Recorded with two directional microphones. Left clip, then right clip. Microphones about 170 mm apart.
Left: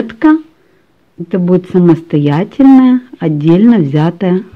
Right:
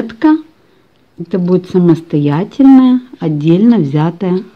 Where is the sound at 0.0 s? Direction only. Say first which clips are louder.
Left 2 dB; 10° left (ahead or behind).